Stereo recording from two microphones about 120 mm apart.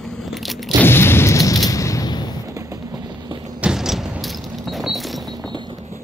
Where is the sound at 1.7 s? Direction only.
25° left (ahead or behind).